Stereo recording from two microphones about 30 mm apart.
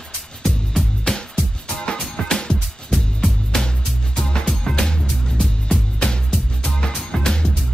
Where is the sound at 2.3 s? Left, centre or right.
Centre.